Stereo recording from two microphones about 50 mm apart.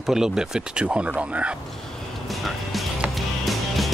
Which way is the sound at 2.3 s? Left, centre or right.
Centre.